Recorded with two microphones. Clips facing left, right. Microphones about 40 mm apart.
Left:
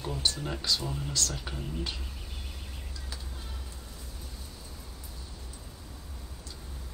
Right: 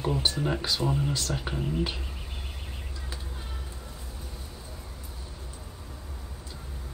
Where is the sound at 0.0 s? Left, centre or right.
Right.